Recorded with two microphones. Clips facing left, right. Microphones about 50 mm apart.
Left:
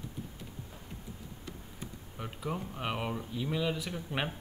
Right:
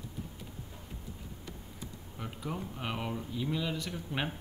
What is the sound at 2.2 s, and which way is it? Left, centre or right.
Speech, centre.